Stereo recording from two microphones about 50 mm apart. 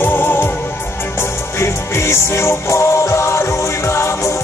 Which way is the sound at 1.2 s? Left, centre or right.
Left.